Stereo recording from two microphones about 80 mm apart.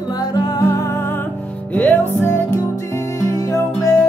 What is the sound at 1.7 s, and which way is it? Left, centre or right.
Music, centre.